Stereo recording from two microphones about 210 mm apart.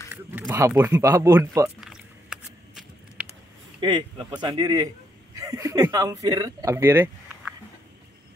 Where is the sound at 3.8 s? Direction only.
20° right (ahead or behind).